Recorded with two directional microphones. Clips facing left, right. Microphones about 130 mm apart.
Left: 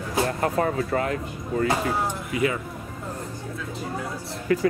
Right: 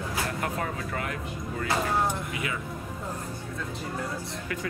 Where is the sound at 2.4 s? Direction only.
35° left (ahead or behind).